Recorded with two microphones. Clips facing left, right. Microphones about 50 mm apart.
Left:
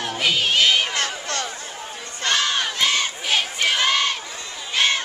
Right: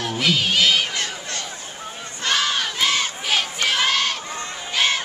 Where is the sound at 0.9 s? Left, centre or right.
Left.